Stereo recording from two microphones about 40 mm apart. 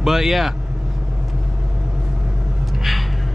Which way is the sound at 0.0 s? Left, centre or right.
Centre.